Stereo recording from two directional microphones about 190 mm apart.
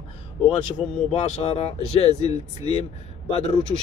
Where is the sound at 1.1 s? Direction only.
35° left (ahead or behind).